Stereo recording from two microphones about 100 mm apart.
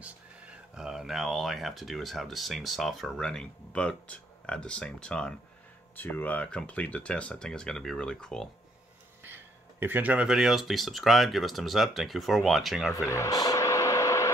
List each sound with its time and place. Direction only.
0.0 s speech: 10° right (ahead or behind); by 8.5 s 5° left (ahead or behind)
9.2 s speech: 20° right (ahead or behind); by 12.9 s centre (ahead or behind)
13.1 s a sound: 35° left (ahead or behind)